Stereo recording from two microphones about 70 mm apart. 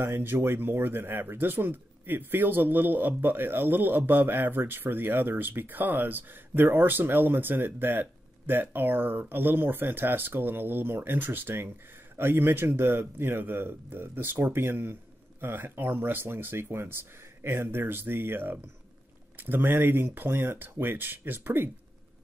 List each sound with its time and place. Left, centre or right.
0.0 s speech: right